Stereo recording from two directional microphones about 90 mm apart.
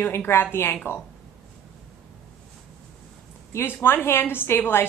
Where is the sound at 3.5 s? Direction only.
30° left (ahead or behind).